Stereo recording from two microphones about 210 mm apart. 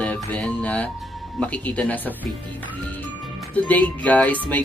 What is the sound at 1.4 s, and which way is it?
Speech, 5° left (ahead or behind).